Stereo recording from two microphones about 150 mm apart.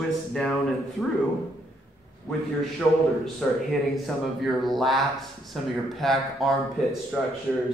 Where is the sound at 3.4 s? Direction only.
5° left (ahead or behind).